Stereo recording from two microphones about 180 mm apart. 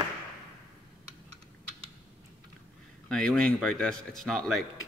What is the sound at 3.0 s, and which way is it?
Speech, 5° left (ahead or behind).